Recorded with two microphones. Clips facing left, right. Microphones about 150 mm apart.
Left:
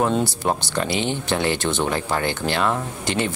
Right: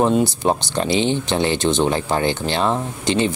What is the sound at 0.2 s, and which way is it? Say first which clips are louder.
Speech: right 4 dB; 20° right (ahead or behind).